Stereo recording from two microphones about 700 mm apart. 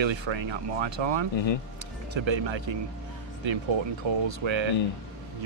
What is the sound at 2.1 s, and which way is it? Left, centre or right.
Speech, right.